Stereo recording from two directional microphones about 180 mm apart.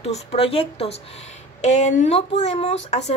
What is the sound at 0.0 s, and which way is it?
A woman's voice, 35° left (ahead or behind).